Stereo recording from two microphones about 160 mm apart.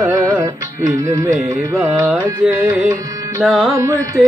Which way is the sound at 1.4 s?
20° right (ahead or behind).